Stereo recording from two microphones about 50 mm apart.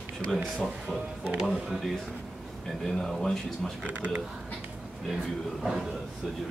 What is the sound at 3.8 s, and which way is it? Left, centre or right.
Speech, right.